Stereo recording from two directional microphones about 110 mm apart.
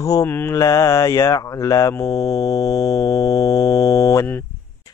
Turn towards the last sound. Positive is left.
turn(degrees=30)  # may be behind; listen again after turning